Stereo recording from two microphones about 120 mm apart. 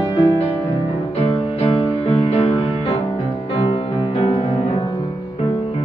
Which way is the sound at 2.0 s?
60° left (ahead or behind).